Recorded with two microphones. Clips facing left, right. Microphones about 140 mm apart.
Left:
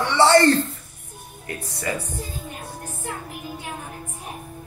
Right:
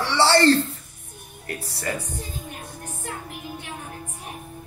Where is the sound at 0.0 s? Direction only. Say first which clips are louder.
Left 2 dB; 30° right (ahead or behind).